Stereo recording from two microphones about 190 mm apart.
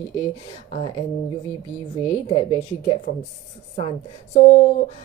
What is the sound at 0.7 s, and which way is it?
Speech, 30° left (ahead or behind).